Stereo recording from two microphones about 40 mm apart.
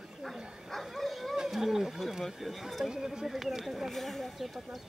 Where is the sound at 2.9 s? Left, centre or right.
Centre.